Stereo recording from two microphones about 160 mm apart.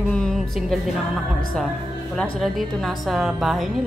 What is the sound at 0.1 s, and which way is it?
Music, centre (ahead or behind).